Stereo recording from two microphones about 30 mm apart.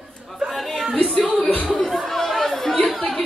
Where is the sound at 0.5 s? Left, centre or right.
Centre.